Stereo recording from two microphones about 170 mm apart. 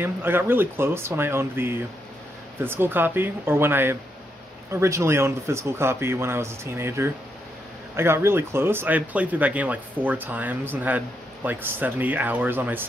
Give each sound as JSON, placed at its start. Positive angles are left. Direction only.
{"t": 0.0, "sound": "speech", "side_deg": -10}